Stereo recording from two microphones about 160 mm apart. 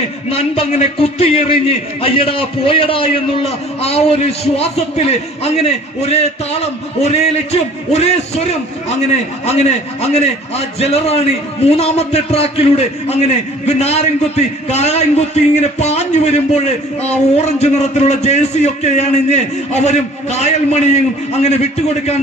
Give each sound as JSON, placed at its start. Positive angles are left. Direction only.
{"t": 0.3, "sound": "a man's voice", "side_deg": 40}
{"t": 9.5, "sound": "a man's voice", "side_deg": 40}